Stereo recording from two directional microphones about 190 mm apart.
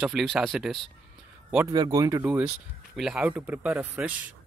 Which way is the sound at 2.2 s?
10° right (ahead or behind).